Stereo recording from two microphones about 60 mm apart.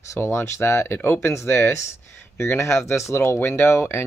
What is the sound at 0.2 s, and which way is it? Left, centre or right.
Speech, left.